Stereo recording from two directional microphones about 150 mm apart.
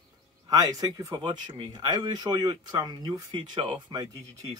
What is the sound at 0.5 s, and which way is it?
Speech, 25° right (ahead or behind).